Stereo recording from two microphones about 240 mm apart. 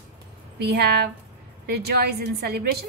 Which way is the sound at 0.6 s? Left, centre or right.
Right.